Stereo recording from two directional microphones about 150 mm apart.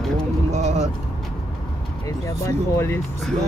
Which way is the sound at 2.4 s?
20° left (ahead or behind).